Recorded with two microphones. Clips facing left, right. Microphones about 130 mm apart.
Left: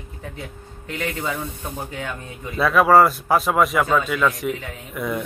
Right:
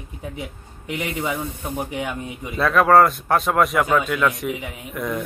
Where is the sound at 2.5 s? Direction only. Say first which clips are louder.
Even; 5° left (ahead or behind).